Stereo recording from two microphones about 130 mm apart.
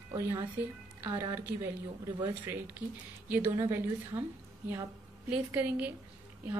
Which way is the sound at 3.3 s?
15° right (ahead or behind).